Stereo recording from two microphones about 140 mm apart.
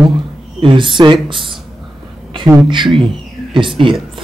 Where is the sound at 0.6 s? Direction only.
35° right (ahead or behind).